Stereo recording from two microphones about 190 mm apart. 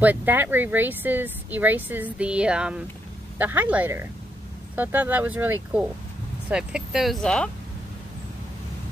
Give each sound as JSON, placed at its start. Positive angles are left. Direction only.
{"t": 0.0, "sound": "speech", "side_deg": -10}